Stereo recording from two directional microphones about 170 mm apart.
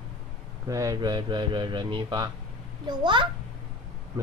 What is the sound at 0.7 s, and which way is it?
Speech, 20° right (ahead or behind).